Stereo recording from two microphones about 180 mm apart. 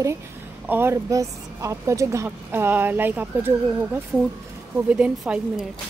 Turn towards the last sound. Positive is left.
turn(degrees=-5)  # may be behind; listen again after turning